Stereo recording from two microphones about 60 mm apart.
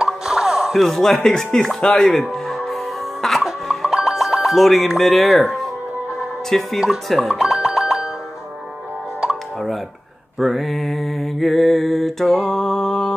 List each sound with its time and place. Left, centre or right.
0.0 s music: centre
0.7 s speech: centre
2.3 s music: centre
4.8 s mantra: centre
6.5 s speech: centre
7.1 s mantra: centre
7.4 s boing: centre
10.4 s mantra: centre